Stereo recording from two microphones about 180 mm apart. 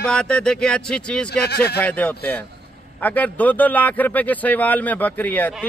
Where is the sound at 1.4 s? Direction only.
65° left (ahead or behind).